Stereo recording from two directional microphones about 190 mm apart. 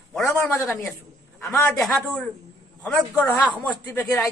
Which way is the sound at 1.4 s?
Centre (ahead or behind).